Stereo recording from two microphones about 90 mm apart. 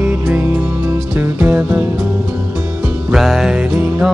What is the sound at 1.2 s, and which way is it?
Music, 25° right (ahead or behind).